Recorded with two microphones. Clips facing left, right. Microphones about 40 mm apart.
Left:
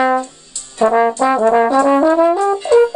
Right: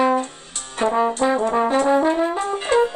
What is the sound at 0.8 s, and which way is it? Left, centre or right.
Brass instrument, left.